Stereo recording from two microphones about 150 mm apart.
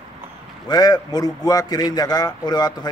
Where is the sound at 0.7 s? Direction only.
25° left (ahead or behind).